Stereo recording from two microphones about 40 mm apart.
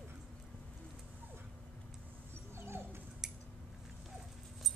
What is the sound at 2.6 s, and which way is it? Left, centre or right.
Dog, right.